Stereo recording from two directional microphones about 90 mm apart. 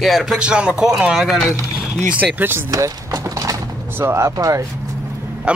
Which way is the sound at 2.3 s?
25° right (ahead or behind).